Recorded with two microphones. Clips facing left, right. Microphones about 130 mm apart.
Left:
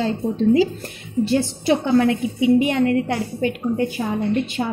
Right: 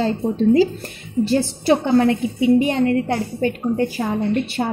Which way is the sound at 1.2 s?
35° right (ahead or behind).